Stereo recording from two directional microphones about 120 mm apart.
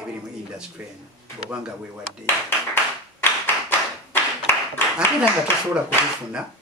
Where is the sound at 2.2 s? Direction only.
20° left (ahead or behind).